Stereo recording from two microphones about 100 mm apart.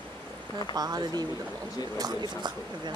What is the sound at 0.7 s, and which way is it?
Speech, 40° right (ahead or behind).